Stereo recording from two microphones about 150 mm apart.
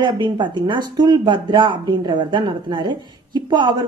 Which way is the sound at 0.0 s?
30° right (ahead or behind).